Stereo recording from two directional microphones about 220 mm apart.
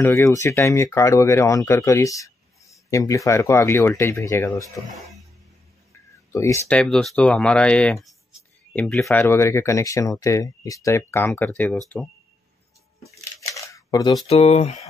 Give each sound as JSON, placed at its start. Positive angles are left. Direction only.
{"t": 0.0, "sound": "speech", "side_deg": 15}
{"t": 6.3, "sound": "speech", "side_deg": 15}
{"t": 13.0, "sound": "camera", "side_deg": 15}